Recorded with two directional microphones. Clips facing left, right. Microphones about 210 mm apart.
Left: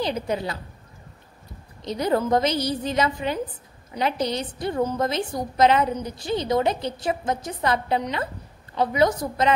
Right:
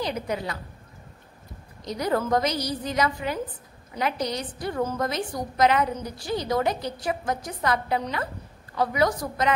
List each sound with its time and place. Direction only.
0.0 s a woman's voice: 30° left (ahead or behind)
1.8 s a woman's voice: 25° left (ahead or behind)